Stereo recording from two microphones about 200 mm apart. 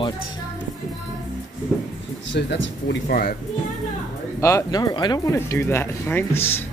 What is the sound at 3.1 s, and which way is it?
Speech, 45° left (ahead or behind).